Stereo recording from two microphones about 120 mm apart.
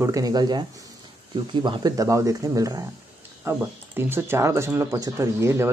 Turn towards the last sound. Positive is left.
turn(degrees=-25)  # may be behind; listen again after turning